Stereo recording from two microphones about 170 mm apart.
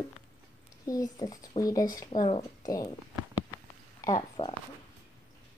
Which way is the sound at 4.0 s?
25° left (ahead or behind).